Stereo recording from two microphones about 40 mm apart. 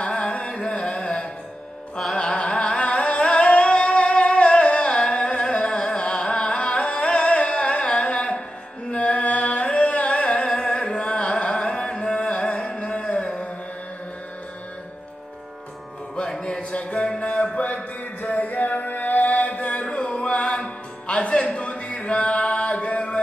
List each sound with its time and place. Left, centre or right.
0.0 s music: left
2.1 s singing: left
8.9 s music: left
16.4 s a sound: left
17.2 s music: left